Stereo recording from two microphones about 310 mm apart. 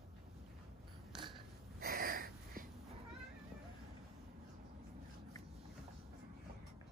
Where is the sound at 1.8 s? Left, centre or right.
Right.